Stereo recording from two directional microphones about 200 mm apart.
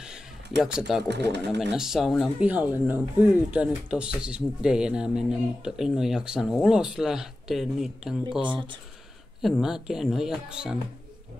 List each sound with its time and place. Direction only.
0.0 s a sound: 5° right (ahead or behind)
1.0 s speech: 55° right (ahead or behind)
1.6 s speech: centre (ahead or behind)
9.4 s speech: centre (ahead or behind)